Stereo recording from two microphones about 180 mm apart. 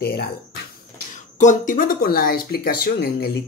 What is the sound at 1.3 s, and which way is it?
Speech, 45° left (ahead or behind).